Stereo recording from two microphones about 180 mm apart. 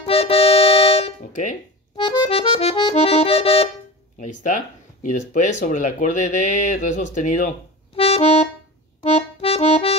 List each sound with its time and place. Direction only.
0.0 s music: 35° left (ahead or behind)
2.0 s accordion: 30° left (ahead or behind)
4.2 s speech: 45° left (ahead or behind)
7.9 s accordion: 30° left (ahead or behind)